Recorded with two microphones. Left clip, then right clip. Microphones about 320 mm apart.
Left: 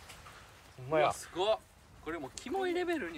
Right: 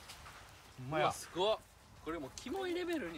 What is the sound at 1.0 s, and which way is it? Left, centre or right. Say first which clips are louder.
Speech: left 3 dB; centre.